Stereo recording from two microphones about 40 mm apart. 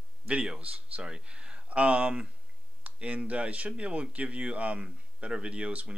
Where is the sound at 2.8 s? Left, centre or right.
Right.